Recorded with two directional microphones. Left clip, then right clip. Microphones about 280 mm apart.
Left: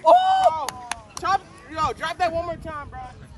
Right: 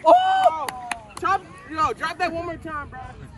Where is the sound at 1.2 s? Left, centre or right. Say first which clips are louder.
Even; left.